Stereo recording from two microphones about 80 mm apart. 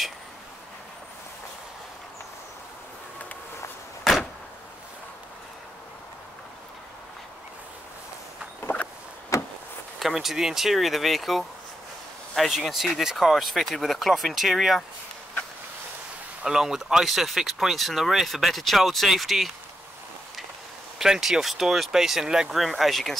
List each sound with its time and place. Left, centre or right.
4.0 s door: centre
8.5 s a sound: left
9.3 s a sound: left
9.9 s speech: centre
16.4 s speech: centre
21.0 s speech: centre